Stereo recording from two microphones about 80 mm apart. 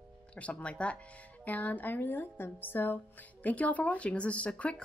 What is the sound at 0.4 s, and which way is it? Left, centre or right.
Speech, centre.